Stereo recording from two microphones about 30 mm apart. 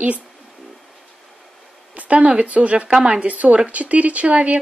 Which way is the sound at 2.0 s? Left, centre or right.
Right.